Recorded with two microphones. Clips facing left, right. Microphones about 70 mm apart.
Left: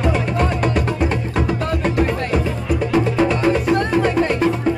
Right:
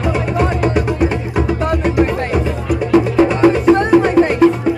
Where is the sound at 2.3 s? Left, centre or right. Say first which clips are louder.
Right 3 dB; centre.